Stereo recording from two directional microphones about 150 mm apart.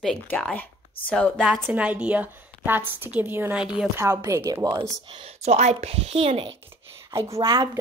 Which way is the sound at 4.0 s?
20° right (ahead or behind).